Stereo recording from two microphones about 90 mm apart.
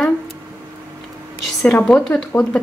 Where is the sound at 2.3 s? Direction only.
35° left (ahead or behind).